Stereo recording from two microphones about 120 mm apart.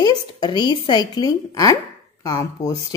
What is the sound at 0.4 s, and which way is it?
A woman's voice, 40° left (ahead or behind).